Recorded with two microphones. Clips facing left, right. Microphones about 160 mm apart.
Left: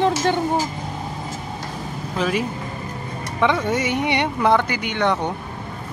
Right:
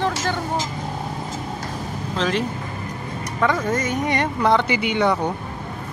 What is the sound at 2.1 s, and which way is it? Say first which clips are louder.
Speech: even; 10° left (ahead or behind).